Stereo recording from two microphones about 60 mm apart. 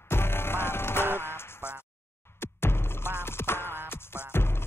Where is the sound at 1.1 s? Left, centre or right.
Left.